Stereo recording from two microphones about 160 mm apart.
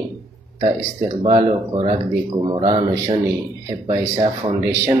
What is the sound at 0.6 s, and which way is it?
Speech, 45° right (ahead or behind).